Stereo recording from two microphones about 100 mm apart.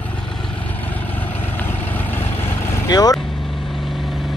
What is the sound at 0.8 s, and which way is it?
Vehicle, 15° left (ahead or behind).